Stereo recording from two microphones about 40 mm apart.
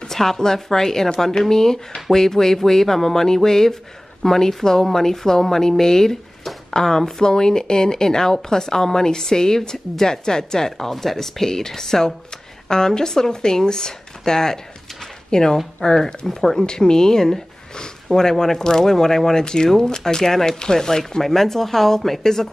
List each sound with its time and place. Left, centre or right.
0.1 s a woman's voice: centre